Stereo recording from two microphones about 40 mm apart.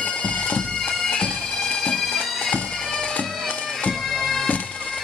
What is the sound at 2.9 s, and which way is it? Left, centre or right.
Bagpipes, left.